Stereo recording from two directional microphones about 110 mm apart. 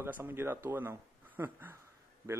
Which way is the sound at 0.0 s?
20° right (ahead or behind).